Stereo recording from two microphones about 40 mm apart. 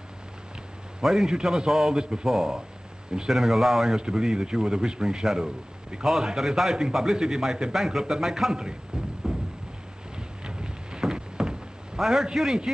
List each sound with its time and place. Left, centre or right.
1.0 s a man's voice: centre
9.2 s a sound: centre
12.0 s a man's voice: centre